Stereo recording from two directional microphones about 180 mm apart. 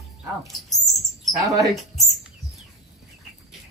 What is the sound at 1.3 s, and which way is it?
Speech, 20° right (ahead or behind).